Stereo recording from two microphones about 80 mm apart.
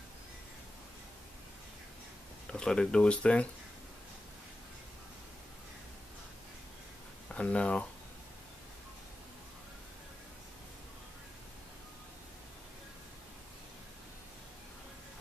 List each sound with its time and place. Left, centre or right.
2.4 s speech: centre
7.3 s speech: centre